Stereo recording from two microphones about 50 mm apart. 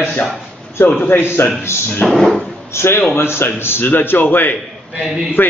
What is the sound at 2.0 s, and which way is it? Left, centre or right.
Speech, centre.